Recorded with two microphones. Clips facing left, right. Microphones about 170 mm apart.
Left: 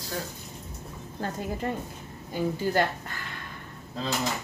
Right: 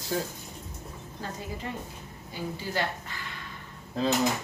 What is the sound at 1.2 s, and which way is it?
A woman's voice, 50° left (ahead or behind).